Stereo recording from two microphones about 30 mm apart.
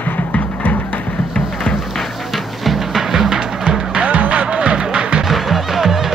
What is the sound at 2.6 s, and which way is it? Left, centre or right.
Music, centre.